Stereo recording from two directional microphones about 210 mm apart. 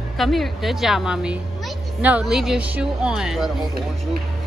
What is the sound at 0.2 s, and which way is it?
Speech, centre (ahead or behind).